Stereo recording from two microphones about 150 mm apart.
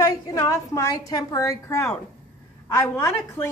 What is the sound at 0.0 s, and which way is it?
A woman's voice, 20° left (ahead or behind).